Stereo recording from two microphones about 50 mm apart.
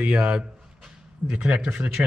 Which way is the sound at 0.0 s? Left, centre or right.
Centre.